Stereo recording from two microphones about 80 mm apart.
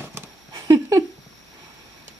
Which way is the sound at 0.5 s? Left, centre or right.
Right.